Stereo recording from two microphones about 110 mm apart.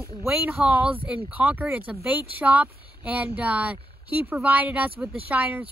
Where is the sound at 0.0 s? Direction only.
15° right (ahead or behind).